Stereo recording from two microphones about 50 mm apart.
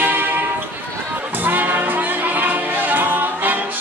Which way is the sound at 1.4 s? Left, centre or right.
Right.